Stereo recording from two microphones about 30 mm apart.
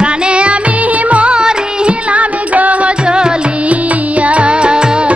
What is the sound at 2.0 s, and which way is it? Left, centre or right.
Music, right.